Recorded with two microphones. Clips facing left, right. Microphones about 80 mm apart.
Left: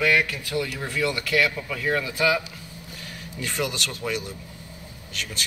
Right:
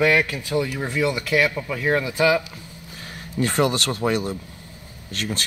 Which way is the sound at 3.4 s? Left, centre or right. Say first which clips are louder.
Right 8 dB; right.